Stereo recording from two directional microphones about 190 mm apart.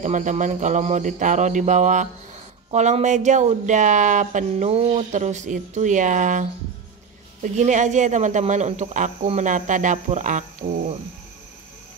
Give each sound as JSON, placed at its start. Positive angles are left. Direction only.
{"t": 0.0, "sound": "speech", "side_deg": -40}
{"t": 7.5, "sound": "speech", "side_deg": -40}